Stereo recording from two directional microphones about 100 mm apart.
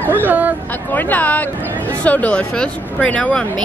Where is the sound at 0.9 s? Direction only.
15° left (ahead or behind).